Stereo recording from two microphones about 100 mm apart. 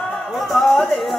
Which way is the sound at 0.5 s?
5° left (ahead or behind).